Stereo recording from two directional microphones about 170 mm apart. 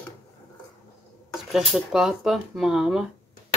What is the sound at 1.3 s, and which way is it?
Speech, centre (ahead or behind).